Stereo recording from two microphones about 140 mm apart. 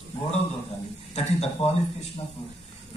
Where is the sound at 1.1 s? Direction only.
50° left (ahead or behind).